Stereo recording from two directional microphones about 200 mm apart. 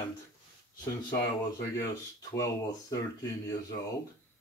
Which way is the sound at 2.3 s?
15° left (ahead or behind).